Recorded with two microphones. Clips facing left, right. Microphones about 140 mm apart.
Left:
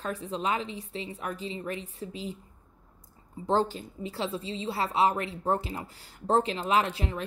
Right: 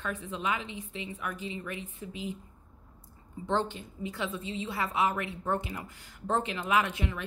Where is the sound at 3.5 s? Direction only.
35° left (ahead or behind).